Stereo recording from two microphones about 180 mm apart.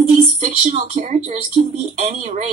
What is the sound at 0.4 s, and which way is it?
Speech, 45° right (ahead or behind).